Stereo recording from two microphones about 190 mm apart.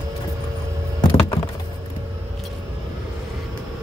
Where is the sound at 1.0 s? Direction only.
20° left (ahead or behind).